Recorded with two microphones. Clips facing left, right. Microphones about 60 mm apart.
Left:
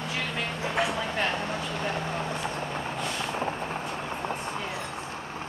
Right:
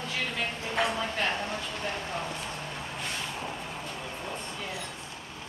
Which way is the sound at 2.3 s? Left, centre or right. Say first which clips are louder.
Left 6 dB; left.